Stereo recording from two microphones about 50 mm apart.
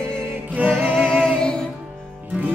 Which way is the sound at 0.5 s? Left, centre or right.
Right.